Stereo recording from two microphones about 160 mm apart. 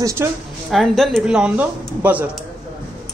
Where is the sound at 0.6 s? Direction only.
Centre (ahead or behind).